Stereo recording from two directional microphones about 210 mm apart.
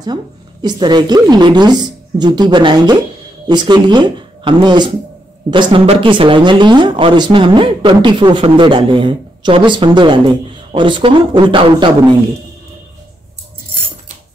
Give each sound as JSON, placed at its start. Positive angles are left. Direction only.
{"t": 0.0, "sound": "speech", "side_deg": -20}